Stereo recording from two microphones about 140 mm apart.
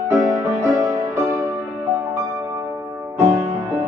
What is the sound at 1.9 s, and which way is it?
Music, 20° right (ahead or behind).